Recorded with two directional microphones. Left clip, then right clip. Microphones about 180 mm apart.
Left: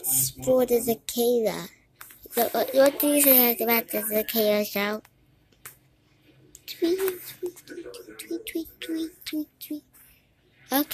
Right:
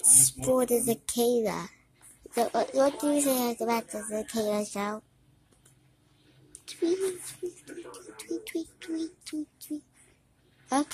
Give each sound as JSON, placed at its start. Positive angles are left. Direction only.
{"t": 0.0, "sound": "a child's voice", "side_deg": -20}
{"t": 6.6, "sound": "speech", "side_deg": -10}